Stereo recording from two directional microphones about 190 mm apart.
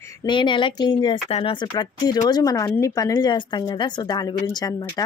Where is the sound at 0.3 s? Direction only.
25° left (ahead or behind).